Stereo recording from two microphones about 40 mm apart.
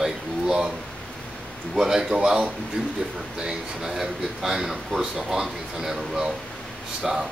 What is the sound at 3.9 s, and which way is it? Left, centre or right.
Speech, centre.